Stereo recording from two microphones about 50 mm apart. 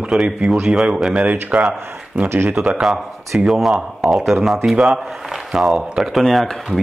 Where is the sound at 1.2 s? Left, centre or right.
Right.